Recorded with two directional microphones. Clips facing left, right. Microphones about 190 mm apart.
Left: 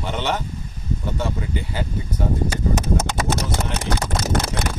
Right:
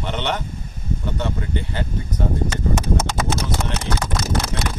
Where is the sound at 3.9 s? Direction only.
55° left (ahead or behind).